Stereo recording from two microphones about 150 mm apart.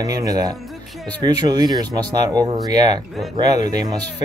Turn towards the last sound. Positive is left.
turn(degrees=-25)  # may be behind; listen again after turning